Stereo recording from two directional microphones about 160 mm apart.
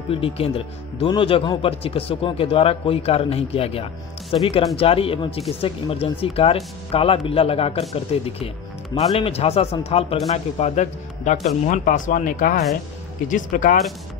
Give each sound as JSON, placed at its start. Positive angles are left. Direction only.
{"t": 0.1, "sound": "speech", "side_deg": 35}